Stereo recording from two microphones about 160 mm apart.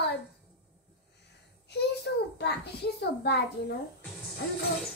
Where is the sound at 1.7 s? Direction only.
90° left.